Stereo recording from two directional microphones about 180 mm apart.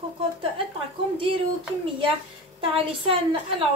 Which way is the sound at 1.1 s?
30° right (ahead or behind).